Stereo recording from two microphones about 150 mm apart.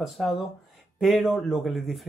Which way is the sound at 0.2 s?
Centre (ahead or behind).